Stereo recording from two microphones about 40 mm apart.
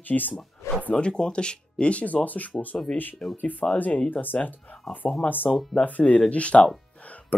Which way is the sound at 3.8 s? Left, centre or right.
Left.